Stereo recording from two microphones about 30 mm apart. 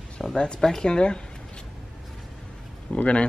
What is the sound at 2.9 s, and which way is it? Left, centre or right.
Speech, left.